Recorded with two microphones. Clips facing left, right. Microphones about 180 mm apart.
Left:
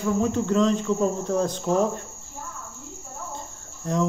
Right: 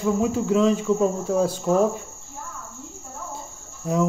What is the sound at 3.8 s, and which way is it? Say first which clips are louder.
Speech: right 2 dB; 5° right (ahead or behind).